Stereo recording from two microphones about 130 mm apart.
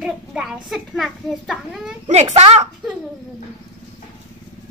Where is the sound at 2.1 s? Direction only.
60° right (ahead or behind).